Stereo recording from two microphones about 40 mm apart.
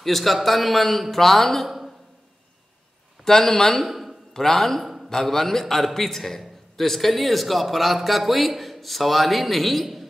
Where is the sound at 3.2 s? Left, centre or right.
Centre.